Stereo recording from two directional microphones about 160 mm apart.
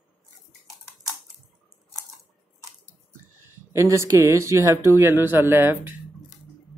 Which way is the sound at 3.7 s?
20° right (ahead or behind).